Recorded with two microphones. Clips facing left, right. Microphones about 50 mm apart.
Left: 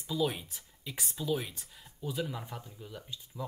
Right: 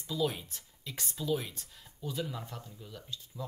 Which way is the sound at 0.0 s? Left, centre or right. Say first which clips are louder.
Left 1 dB; centre.